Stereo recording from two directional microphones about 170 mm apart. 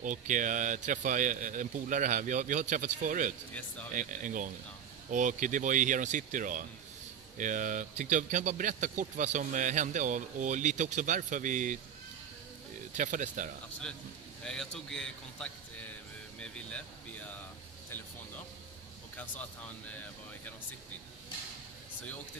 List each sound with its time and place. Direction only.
0.0 s speech: 50° right (ahead or behind)
12.9 s speech: 45° right (ahead or behind)
14.4 s a man's voice: 5° left (ahead or behind)
19.9 s speech: 10° left (ahead or behind)